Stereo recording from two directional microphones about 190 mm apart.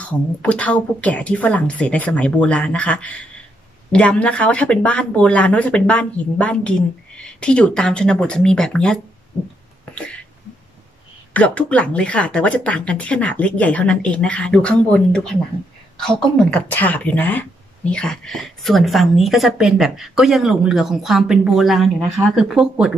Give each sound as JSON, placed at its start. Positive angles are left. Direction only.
{"t": 0.0, "sound": "a woman's voice", "side_deg": 5}
{"t": 9.9, "sound": "a sound", "side_deg": 5}
{"t": 11.3, "sound": "a woman's voice", "side_deg": 5}